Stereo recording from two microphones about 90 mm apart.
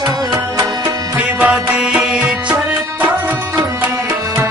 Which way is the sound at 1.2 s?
15° right (ahead or behind).